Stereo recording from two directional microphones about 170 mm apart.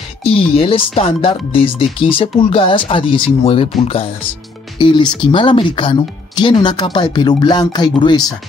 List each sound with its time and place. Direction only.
0.2 s speech: 35° left (ahead or behind)